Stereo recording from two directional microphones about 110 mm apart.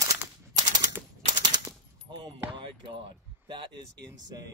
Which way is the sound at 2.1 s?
45° right (ahead or behind).